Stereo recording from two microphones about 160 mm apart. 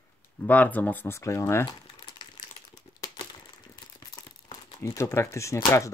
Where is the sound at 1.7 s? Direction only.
30° left (ahead or behind).